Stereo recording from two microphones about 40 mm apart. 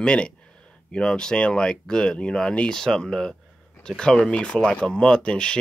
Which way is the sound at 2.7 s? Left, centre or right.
Centre.